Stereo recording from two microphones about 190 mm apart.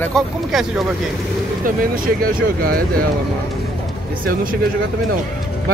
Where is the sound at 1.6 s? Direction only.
50° right (ahead or behind).